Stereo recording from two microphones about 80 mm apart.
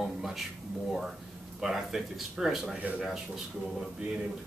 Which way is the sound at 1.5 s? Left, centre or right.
Centre.